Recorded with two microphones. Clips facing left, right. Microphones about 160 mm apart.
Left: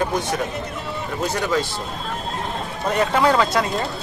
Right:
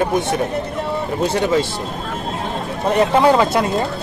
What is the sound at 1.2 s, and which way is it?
Speech, 25° right (ahead or behind).